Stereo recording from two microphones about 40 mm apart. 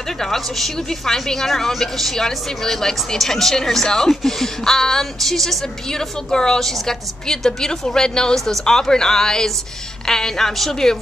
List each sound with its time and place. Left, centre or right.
0.2 s a woman's voice: centre
5.9 s a woman's voice: centre